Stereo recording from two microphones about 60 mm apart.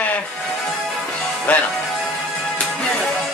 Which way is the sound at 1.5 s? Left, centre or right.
Left.